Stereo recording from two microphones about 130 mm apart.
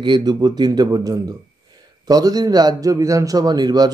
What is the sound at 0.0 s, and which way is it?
A man's voice, 35° right (ahead or behind).